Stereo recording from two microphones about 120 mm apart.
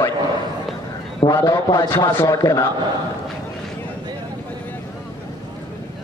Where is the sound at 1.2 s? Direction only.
25° left (ahead or behind).